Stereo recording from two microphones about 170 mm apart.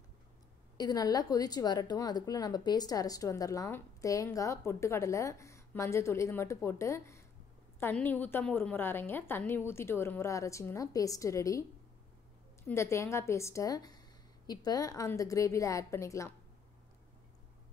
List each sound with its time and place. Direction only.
0.7 s a woman's voice: 20° left (ahead or behind)
12.6 s a woman's voice: 15° left (ahead or behind)